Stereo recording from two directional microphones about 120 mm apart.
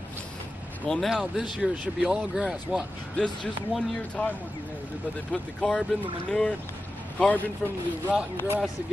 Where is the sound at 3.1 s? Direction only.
10° left (ahead or behind).